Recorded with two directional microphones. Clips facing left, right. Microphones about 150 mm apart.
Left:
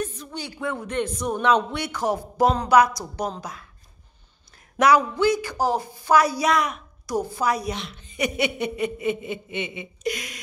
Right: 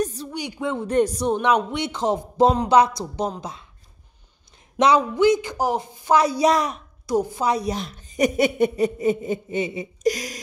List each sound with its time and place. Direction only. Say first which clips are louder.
0.0 s a sound: right 5 dB; 35° right (ahead or behind)
0.3 s speech: right 3 dB; 15° right (ahead or behind)
0.8 s speech: right 9 dB; 35° right (ahead or behind)
1.3 s a woman's voice: right 1 dB; 15° right (ahead or behind); by 6.8 s 35° right (ahead or behind)
7.1 s a woman's voice: right 3 dB; 20° right (ahead or behind)
7.7 s speech: right 5 dB; 40° right (ahead or behind)